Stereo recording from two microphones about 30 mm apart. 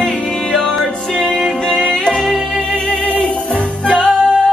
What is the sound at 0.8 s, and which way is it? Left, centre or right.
Music, centre.